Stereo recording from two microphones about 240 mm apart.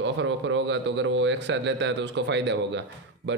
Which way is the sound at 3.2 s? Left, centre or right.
Right.